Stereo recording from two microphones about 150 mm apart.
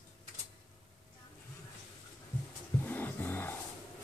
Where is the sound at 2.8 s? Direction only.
15° left (ahead or behind).